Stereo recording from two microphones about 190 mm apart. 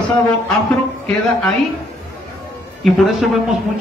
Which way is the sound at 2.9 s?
Centre (ahead or behind).